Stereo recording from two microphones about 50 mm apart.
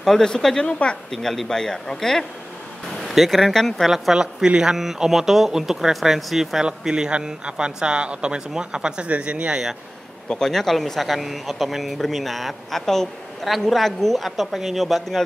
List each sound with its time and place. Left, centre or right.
0.0 s a woman's voice: centre
4.2 s speech: centre
10.3 s speech: centre